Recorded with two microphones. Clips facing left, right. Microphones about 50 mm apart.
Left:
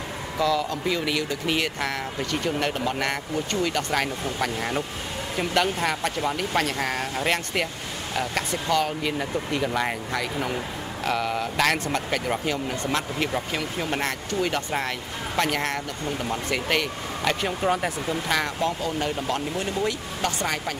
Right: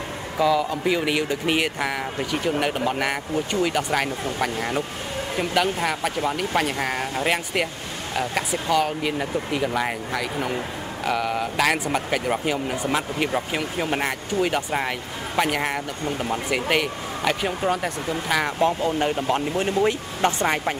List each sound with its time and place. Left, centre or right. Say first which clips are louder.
0.4 s speech: right 3 dB; centre
18.6 s speech: right 5 dB; right